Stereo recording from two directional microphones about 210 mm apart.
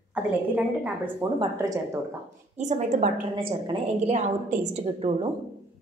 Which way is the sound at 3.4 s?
25° right (ahead or behind).